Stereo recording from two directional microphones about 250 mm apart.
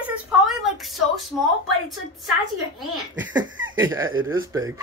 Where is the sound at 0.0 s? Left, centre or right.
Centre.